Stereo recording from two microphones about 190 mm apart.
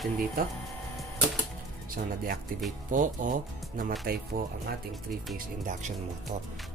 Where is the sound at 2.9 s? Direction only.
45° right (ahead or behind).